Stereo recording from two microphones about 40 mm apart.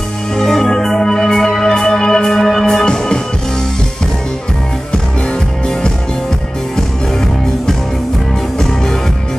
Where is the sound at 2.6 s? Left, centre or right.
Centre.